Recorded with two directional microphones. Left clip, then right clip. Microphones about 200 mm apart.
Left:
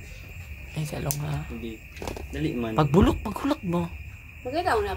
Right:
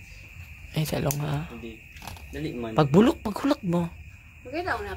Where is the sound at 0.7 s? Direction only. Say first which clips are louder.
Right 5 dB; 45° right (ahead or behind).